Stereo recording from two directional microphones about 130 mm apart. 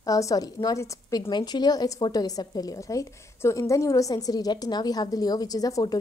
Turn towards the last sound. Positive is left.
turn(degrees=30)  # may be behind; listen again after turning